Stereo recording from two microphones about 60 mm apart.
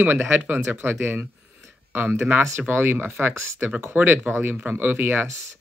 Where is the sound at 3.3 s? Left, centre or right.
Right.